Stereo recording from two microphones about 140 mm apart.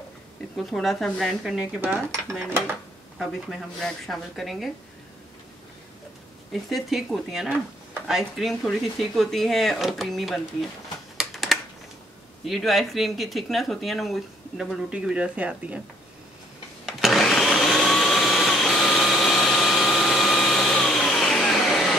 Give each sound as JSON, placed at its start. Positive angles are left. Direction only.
{"t": 0.6, "sound": "speech", "side_deg": 0}
{"t": 1.8, "sound": "speech", "side_deg": -15}
{"t": 3.2, "sound": "speech", "side_deg": 0}
{"t": 6.7, "sound": "speech", "side_deg": 0}
{"t": 11.1, "sound": "typing", "side_deg": 0}
{"t": 12.4, "sound": "speech", "side_deg": 0}
{"t": 16.8, "sound": "blender", "side_deg": 0}